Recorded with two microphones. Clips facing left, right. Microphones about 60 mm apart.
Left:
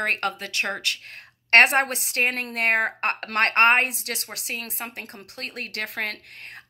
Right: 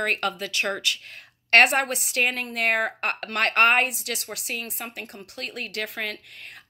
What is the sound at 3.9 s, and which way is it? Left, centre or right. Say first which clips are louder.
A woman's voice: right 1 dB; left.